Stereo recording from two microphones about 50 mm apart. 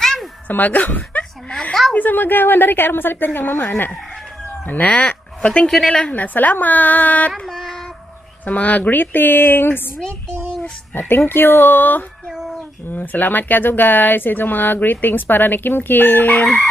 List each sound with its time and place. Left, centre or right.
0.0 s a sound: centre
0.5 s speech: left
1.5 s a sound: centre
2.0 s a woman's voice: left
4.6 s speech: left
5.7 s a woman's voice: centre
6.1 s speech: left
7.4 s a sound: centre
8.5 s speech: left
11.0 s a woman's voice: left
12.3 s a sound: centre
12.9 s speech: left